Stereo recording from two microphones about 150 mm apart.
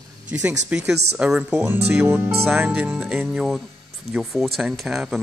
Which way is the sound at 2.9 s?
Centre (ahead or behind).